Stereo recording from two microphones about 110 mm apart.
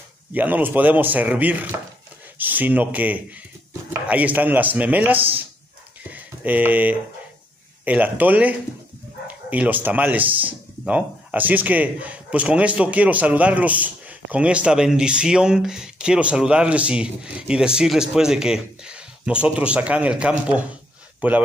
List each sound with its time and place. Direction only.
0.3 s speech: 15° right (ahead or behind)
6.0 s a sound: 15° right (ahead or behind)
7.8 s speech: 15° right (ahead or behind)